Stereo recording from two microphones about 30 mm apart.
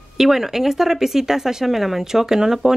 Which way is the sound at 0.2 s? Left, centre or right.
Centre.